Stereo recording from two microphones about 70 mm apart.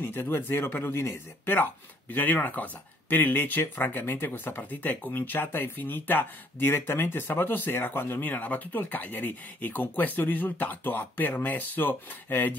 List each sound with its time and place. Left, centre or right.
0.0 s speech: left